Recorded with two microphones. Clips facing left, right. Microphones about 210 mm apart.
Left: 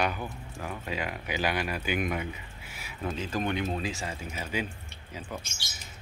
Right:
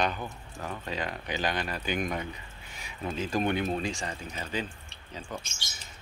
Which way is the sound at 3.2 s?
45° right (ahead or behind).